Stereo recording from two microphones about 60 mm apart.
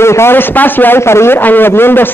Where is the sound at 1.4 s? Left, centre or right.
Left.